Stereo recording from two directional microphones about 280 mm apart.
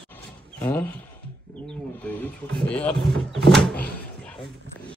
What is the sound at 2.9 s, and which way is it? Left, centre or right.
Speech, centre.